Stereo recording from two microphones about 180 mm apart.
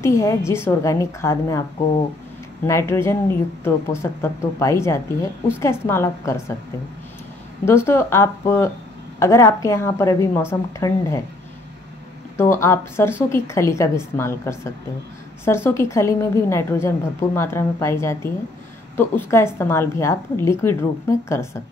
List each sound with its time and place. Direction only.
0.0 s a woman's voice: 15° left (ahead or behind)
2.6 s a woman's voice: 15° left (ahead or behind)
7.6 s a woman's voice: 15° left (ahead or behind)
12.4 s a woman's voice: 15° left (ahead or behind)